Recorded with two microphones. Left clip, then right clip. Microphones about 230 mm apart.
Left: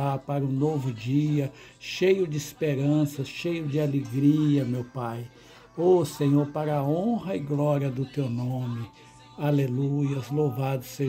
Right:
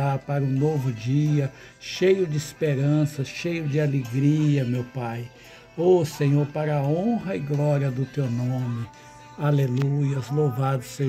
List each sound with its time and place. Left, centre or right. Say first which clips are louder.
0.0 s speech: right 2 dB; centre